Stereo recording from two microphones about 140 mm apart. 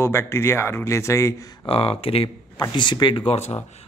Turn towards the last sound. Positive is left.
turn(degrees=50)  # may be behind; listen again after turning